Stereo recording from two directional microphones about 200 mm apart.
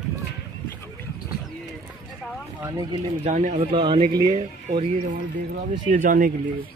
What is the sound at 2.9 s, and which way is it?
Speech, 35° right (ahead or behind).